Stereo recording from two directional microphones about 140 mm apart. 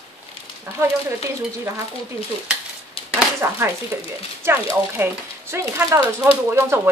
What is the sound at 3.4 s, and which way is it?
Speech, 20° right (ahead or behind).